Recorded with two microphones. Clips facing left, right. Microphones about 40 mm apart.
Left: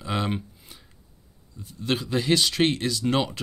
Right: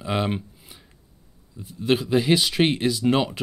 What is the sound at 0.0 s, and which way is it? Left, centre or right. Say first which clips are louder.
Speech: right 3 dB; centre.